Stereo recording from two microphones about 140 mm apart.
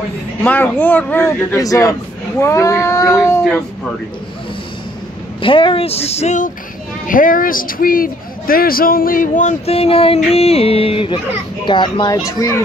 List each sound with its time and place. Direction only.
0.4 s speech: 15° left (ahead or behind)
5.4 s speech: 35° left (ahead or behind); by 6.5 s 60° left (ahead or behind)
7.1 s a man's voice: 75° left (ahead or behind); by 12.6 s 20° left (ahead or behind)